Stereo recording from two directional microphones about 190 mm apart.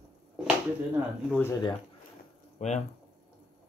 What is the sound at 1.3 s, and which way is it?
Speech, 15° left (ahead or behind).